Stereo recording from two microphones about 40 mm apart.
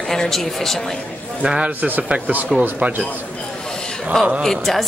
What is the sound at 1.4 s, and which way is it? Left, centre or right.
Speech, right.